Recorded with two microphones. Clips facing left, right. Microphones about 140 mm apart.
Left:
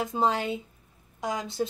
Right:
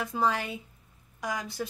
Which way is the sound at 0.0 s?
20° left (ahead or behind).